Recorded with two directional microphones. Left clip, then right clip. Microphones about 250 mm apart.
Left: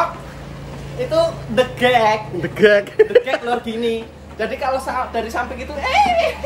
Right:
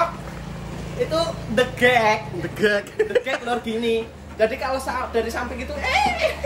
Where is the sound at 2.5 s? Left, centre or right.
Left.